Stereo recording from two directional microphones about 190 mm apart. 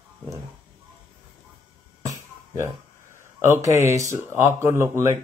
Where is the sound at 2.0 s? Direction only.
15° right (ahead or behind).